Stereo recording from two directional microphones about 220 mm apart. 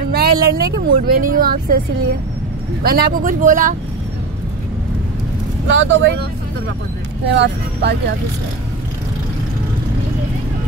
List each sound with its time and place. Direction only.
0.1 s speech: 45° right (ahead or behind)
2.8 s speech: 45° right (ahead or behind)
5.7 s speech: 55° right (ahead or behind)
7.2 s speech: 50° right (ahead or behind)